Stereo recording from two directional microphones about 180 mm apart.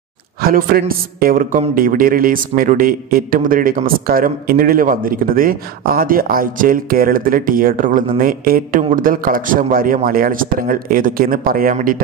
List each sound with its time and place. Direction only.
0.4 s speech: 55° right (ahead or behind)